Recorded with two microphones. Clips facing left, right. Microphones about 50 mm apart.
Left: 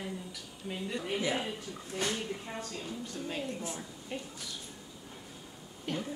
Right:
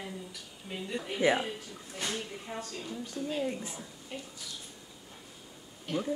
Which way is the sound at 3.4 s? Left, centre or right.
Right.